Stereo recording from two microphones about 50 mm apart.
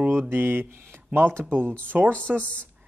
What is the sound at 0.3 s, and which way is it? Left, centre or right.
Speech, right.